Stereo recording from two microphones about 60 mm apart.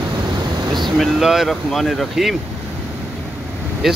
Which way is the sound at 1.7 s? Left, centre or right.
Centre.